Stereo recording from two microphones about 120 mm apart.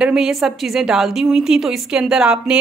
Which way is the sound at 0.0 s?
5° right (ahead or behind).